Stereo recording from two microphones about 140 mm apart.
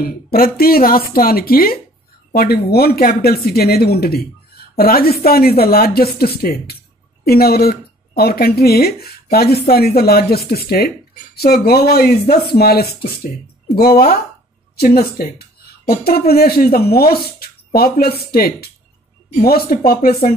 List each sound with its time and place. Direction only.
0.0 s speech: 90° left